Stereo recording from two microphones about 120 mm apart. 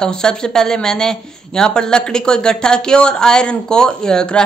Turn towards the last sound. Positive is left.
turn(degrees=5)  # may be behind; listen again after turning